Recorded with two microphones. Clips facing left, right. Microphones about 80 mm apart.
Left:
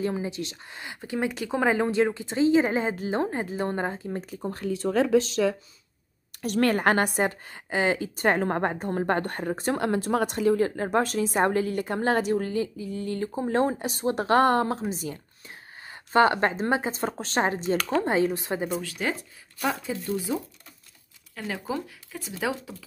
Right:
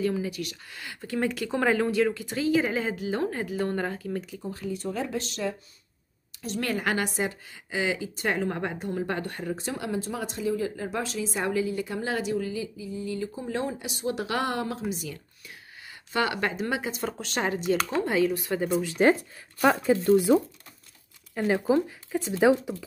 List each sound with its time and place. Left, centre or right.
0.0 s speech: left
4.3 s a woman's voice: left
4.7 s speech: left
6.4 s a woman's voice: left
19.0 s speech: right
19.9 s speech: right
21.4 s speech: right